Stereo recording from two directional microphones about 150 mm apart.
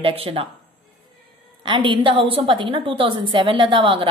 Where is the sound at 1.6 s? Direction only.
35° right (ahead or behind).